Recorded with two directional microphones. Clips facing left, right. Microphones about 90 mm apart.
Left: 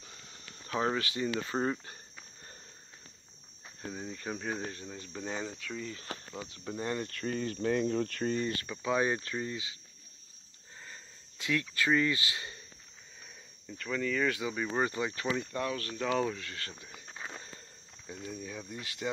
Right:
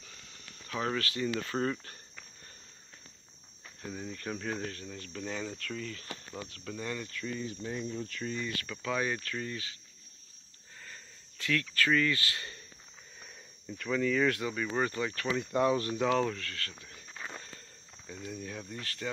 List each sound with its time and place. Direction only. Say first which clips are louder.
0.0 s a sound: left 1 dB; 25° left (ahead or behind)
3.6 s speech: even; 15° left (ahead or behind)
5.6 s speech: right 1 dB; 5° left (ahead or behind)
5.9 s speech: left 1 dB; 30° left (ahead or behind)
7.1 s speech: left 3 dB; 50° left (ahead or behind)
8.6 s speech: left 2 dB; 20° left (ahead or behind)
10.8 s a sound: even; 15° left (ahead or behind)
13.7 s speech: right 3 dB; centre (ahead or behind)
14.8 s speech: even; 15° left (ahead or behind)
15.5 s speech: right 7 dB; 20° right (ahead or behind)
16.0 s speech: left 1 dB; 5° left (ahead or behind)
16.3 s speech: right 1 dB; 20° left (ahead or behind)
18.3 s speech: right 1 dB; centre (ahead or behind)